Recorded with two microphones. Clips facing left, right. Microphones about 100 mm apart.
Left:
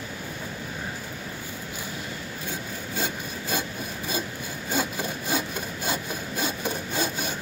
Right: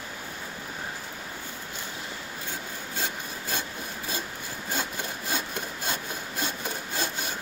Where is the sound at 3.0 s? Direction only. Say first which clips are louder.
Left 3 dB; 10° left (ahead or behind).